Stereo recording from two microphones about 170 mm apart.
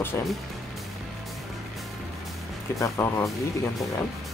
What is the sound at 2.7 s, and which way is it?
Speech, 15° left (ahead or behind).